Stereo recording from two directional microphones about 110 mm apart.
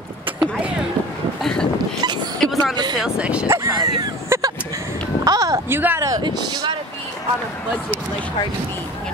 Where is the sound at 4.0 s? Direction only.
30° right (ahead or behind).